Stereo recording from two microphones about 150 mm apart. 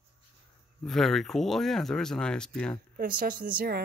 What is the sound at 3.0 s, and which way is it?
Speech, 70° right (ahead or behind).